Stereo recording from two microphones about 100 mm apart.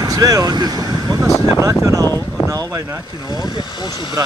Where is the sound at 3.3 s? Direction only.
50° left (ahead or behind).